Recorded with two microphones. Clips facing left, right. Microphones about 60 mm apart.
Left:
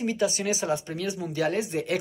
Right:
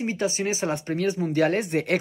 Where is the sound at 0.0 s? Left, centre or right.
Right.